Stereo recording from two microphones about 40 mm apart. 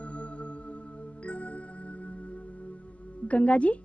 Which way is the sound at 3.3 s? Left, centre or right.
Left.